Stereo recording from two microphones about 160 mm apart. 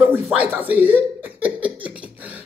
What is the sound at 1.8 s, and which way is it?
Beatboxing, 10° right (ahead or behind).